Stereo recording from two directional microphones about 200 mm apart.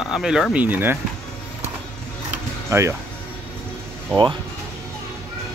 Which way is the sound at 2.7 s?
15° right (ahead or behind).